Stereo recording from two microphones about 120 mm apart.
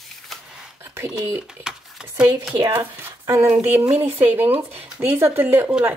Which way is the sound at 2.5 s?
30° right (ahead or behind).